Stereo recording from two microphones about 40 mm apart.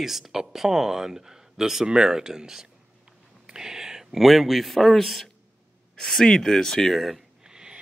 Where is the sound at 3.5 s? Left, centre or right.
Centre.